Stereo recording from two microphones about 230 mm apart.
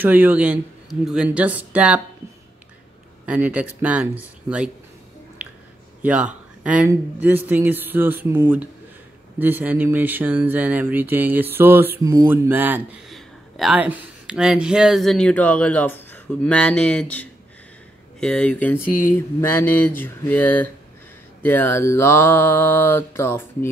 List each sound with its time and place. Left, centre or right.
0.0 s speech: centre
3.3 s speech: centre
6.0 s speech: centre
18.8 s speech: left
19.1 s mantra: centre